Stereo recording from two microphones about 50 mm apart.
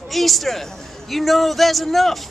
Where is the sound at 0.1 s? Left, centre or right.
Centre.